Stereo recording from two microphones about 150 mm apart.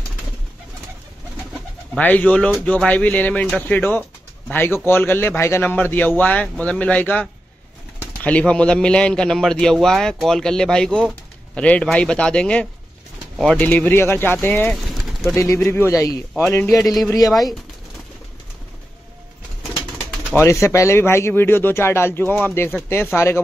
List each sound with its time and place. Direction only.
2.0 s a man's voice: 10° left (ahead or behind)
14.9 s pigeon: centre (ahead or behind)
15.3 s speech: 20° left (ahead or behind)
16.8 s a man's voice: centre (ahead or behind)
20.3 s speech: 20° left (ahead or behind)